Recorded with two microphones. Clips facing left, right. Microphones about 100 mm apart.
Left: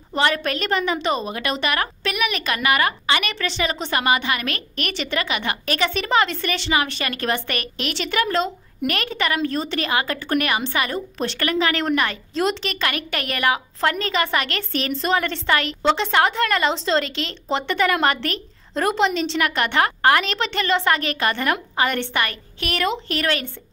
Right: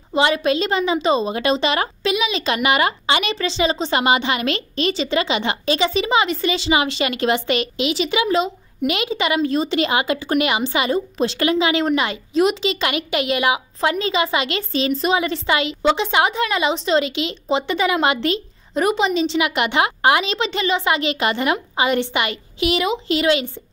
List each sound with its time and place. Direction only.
0.1 s a woman's voice: 15° right (ahead or behind)
18.8 s a woman's voice: 5° right (ahead or behind)